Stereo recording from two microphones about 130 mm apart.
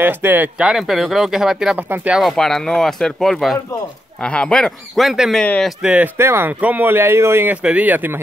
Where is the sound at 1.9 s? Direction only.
15° right (ahead or behind).